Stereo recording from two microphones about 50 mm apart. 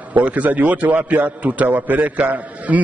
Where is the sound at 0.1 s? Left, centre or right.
Right.